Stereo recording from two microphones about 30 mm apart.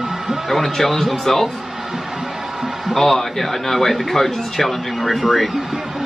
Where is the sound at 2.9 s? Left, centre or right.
Centre.